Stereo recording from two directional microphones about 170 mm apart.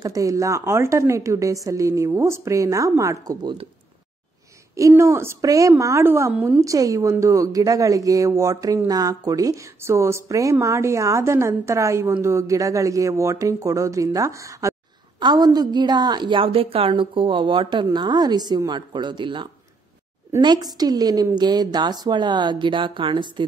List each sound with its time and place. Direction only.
0.0 s a woman's voice: 20° right (ahead or behind)
4.7 s a woman's voice: 20° right (ahead or behind)